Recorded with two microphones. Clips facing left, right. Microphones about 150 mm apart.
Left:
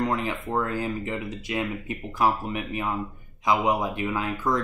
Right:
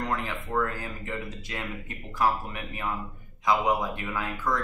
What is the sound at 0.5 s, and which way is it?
Speech, 25° left (ahead or behind).